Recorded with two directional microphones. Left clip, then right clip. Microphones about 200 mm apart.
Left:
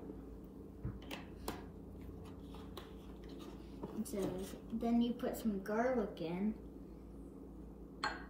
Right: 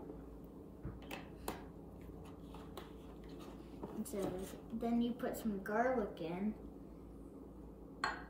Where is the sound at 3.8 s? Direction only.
Centre (ahead or behind).